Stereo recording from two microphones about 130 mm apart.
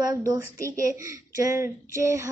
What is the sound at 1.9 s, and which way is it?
Speech, 20° right (ahead or behind).